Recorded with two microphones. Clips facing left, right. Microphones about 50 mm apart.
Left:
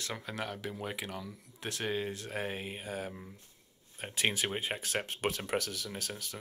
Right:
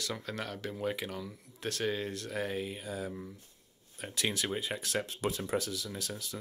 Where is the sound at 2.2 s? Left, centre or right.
Left.